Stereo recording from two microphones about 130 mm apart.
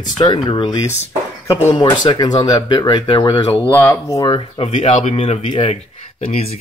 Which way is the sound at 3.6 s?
20° left (ahead or behind).